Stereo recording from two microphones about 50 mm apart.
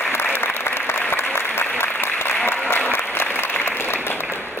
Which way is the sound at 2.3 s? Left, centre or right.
Left.